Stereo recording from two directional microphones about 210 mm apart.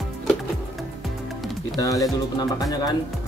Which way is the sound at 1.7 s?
15° left (ahead or behind).